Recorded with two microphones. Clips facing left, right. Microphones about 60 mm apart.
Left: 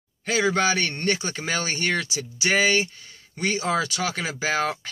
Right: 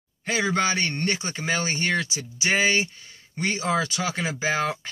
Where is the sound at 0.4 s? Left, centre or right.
Right.